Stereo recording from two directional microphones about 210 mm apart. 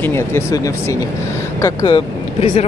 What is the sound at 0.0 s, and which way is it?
Speech, 10° left (ahead or behind).